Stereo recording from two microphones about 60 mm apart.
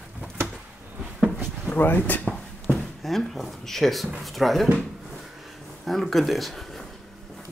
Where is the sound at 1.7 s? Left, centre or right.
Left.